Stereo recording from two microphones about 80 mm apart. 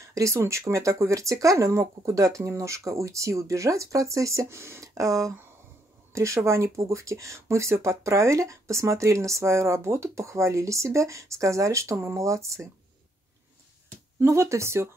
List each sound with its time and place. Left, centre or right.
0.1 s speech: right
14.2 s speech: right